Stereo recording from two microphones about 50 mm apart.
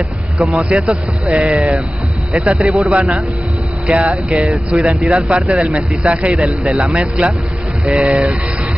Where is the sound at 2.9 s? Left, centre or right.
Right.